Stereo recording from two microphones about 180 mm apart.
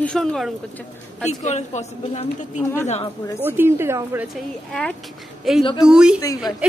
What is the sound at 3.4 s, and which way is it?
Speech, 15° right (ahead or behind).